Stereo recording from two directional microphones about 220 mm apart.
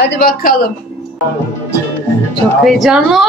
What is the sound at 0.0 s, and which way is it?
Speech, 45° left (ahead or behind).